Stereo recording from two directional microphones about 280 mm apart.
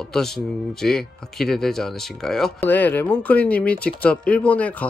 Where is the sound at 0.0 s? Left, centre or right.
Centre.